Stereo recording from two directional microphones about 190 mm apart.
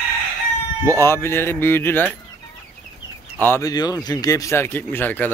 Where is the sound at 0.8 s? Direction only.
15° left (ahead or behind).